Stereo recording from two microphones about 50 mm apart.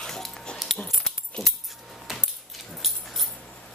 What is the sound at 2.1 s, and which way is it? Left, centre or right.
Keys jangling, centre.